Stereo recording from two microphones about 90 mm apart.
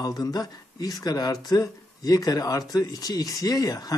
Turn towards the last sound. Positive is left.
turn(degrees=45)  # may be behind; listen again after turning